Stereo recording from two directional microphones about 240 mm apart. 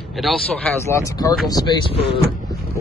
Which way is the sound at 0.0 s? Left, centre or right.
Centre.